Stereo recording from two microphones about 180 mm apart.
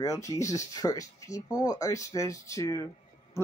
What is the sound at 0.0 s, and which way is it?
Speech, 20° left (ahead or behind).